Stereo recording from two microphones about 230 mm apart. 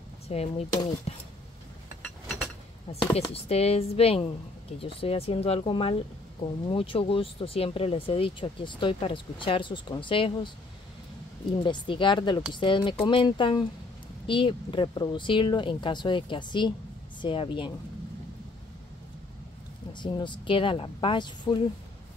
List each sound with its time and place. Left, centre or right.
0.3 s speech: left
3.0 s speech: left
11.6 s speech: centre
19.9 s speech: centre